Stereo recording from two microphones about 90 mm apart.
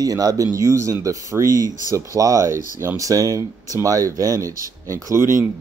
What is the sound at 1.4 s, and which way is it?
Speech, 35° left (ahead or behind).